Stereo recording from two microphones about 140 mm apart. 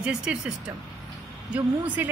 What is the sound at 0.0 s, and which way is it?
Speech, 5° right (ahead or behind).